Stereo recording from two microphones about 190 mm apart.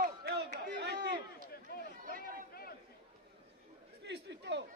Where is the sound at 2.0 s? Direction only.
45° right (ahead or behind).